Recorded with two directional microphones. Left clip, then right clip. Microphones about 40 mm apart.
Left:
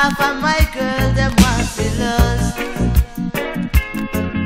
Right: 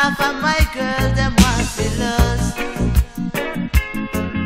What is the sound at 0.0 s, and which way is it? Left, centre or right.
Music, left.